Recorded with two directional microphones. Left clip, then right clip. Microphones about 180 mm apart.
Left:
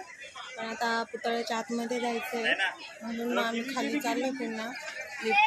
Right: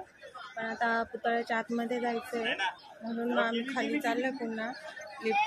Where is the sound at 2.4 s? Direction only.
50° right (ahead or behind).